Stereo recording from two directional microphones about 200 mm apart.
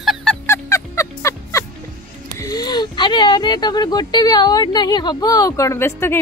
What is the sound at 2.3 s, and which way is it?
Speech, 20° left (ahead or behind).